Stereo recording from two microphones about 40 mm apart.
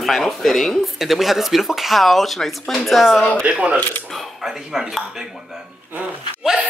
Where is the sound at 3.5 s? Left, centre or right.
Right.